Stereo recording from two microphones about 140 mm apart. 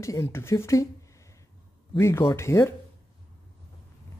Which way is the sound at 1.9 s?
20° left (ahead or behind).